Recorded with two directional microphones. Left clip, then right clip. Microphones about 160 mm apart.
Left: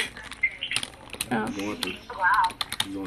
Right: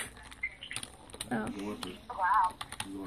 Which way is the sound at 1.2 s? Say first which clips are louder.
Left 8 dB; centre (ahead or behind).